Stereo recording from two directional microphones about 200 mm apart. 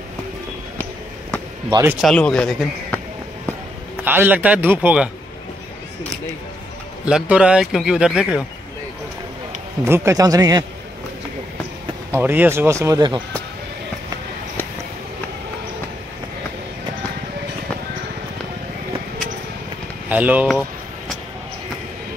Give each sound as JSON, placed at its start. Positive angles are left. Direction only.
{"t": 1.7, "sound": "a man's voice", "side_deg": -15}
{"t": 2.0, "sound": "a man's voice", "side_deg": 5}
{"t": 4.0, "sound": "a man's voice", "side_deg": -10}
{"t": 7.1, "sound": "a man's voice", "side_deg": -5}
{"t": 9.8, "sound": "a man's voice", "side_deg": -15}
{"t": 12.1, "sound": "a man's voice", "side_deg": -10}
{"t": 20.1, "sound": "a man's voice", "side_deg": -10}